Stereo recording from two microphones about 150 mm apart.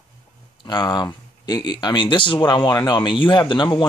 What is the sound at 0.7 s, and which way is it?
Speech, 30° left (ahead or behind).